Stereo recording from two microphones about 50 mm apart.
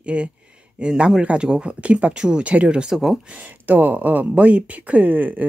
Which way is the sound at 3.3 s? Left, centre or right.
Right.